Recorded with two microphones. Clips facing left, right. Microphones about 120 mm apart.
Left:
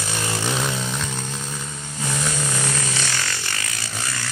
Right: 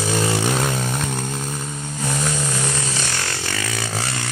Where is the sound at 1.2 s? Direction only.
10° right (ahead or behind).